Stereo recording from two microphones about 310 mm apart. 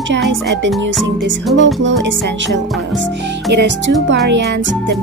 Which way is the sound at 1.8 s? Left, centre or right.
Right.